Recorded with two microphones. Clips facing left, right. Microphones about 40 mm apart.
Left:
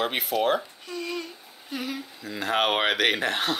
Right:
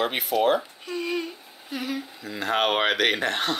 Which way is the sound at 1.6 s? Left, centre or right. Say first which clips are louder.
Right 2 dB; centre.